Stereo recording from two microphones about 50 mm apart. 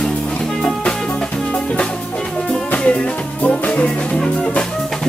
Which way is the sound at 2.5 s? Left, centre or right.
Left.